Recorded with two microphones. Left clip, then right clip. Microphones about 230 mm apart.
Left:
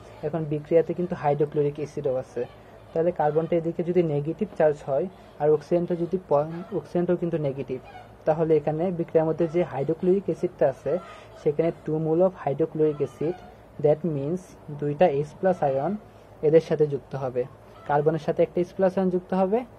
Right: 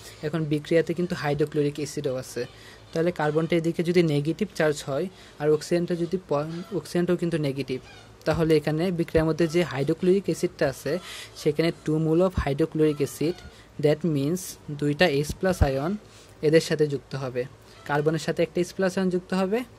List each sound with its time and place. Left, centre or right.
0.2 s speech: right
2.9 s speech: right
5.4 s a man's voice: right
10.6 s speech: right
11.4 s speech: right
16.4 s a man's voice: right